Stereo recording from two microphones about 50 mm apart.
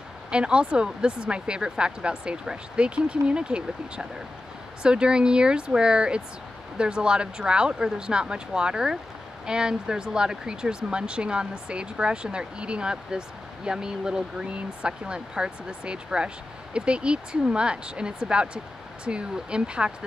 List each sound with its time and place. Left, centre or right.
0.3 s speech: centre